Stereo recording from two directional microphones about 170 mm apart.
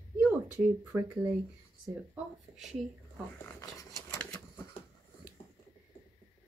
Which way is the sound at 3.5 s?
20° left (ahead or behind).